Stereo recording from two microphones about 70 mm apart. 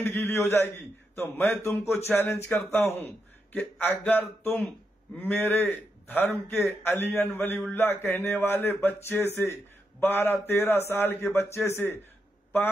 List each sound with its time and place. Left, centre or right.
0.0 s speech: left
4.0 s speech: centre; by 12.0 s left